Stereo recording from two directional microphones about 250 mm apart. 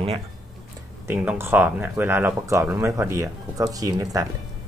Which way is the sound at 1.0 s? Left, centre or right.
Centre.